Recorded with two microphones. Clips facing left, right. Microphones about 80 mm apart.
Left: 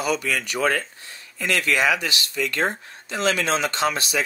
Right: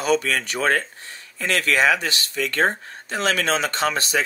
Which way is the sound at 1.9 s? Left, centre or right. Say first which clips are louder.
Right 1 dB; right.